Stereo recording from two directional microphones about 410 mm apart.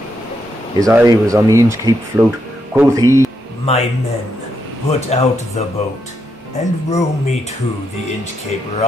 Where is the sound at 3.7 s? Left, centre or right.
Centre.